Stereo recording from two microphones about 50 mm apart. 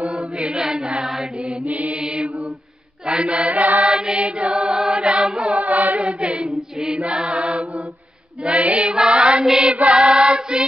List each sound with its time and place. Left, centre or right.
0.0 s chant: right
1.1 s mantra: centre
2.0 s choir: centre
3.2 s music: right
3.8 s music: centre
5.9 s choir: centre
7.0 s music: centre
9.1 s choir: centre
9.7 s choir: right